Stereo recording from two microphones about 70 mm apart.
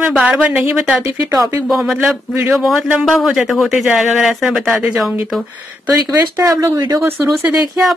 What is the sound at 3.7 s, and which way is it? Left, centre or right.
Speech, right.